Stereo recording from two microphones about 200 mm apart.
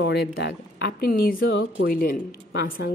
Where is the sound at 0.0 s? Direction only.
55° left (ahead or behind).